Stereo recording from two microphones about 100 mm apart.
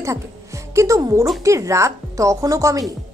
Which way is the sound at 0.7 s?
35° right (ahead or behind).